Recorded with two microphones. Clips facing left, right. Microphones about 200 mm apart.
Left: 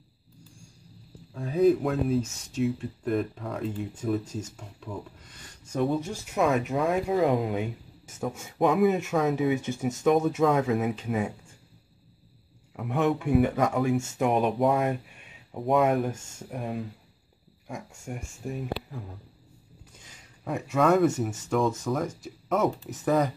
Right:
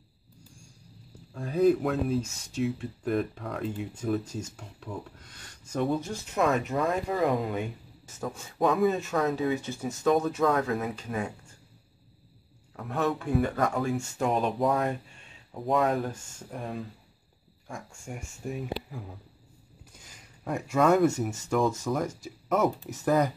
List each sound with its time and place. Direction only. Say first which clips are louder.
1.3 s speech: left 1 dB; centre (ahead or behind)
12.7 s speech: left 3 dB; 15° left (ahead or behind)
18.0 s speech: even; centre (ahead or behind)
20.4 s speech: even; centre (ahead or behind)